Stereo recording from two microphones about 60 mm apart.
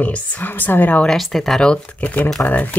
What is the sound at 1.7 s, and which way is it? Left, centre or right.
Speech, left.